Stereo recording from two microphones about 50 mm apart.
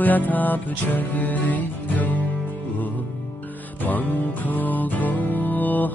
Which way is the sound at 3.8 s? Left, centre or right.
Left.